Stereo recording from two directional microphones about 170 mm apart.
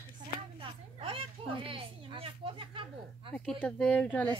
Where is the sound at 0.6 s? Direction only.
35° right (ahead or behind).